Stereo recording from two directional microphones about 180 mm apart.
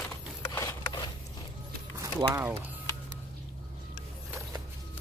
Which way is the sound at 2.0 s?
15° right (ahead or behind).